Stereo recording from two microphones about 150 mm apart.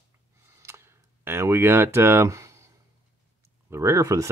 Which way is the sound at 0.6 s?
15° right (ahead or behind).